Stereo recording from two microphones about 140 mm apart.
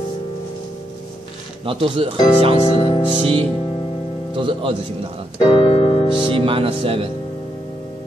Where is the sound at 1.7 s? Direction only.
40° right (ahead or behind).